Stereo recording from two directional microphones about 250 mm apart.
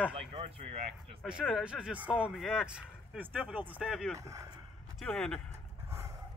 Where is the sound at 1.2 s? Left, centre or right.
Centre.